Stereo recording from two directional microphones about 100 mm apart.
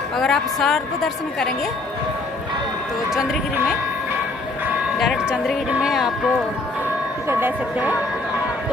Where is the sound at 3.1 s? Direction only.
5° right (ahead or behind).